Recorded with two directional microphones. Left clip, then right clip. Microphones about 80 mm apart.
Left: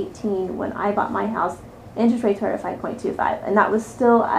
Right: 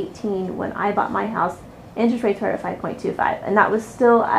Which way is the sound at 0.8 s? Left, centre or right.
Centre.